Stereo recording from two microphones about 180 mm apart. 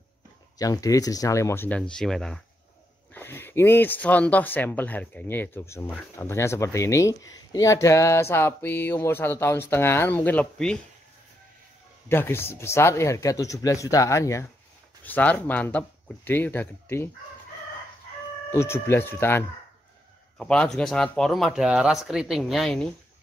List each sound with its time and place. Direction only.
0.6 s speech: 20° left (ahead or behind)
12.1 s speech: 15° left (ahead or behind)
18.5 s speech: 15° left (ahead or behind)